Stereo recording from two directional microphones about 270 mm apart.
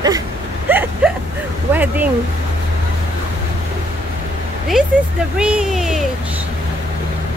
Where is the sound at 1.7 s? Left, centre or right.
Centre.